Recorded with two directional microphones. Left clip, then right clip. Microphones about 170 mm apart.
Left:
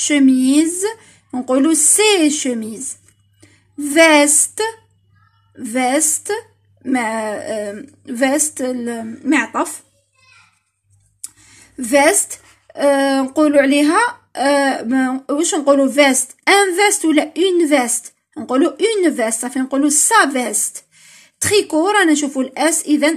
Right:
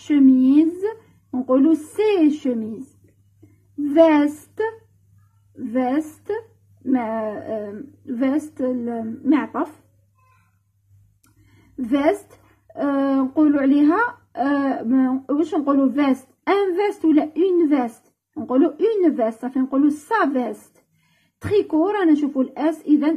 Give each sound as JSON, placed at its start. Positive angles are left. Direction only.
{"t": 0.1, "sound": "a woman's voice", "side_deg": 10}
{"t": 3.9, "sound": "a woman's voice", "side_deg": 5}
{"t": 5.8, "sound": "a woman's voice", "side_deg": 10}
{"t": 11.9, "sound": "a woman's voice", "side_deg": 10}
{"t": 19.2, "sound": "a woman's voice", "side_deg": 15}